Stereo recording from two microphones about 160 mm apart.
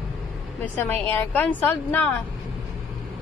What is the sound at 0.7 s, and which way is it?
A woman's voice, 15° left (ahead or behind).